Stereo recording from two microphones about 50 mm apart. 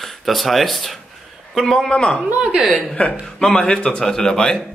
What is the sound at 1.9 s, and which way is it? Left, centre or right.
Speech, centre.